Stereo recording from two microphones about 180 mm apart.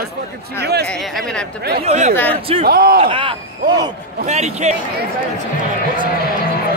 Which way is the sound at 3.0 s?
30° right (ahead or behind).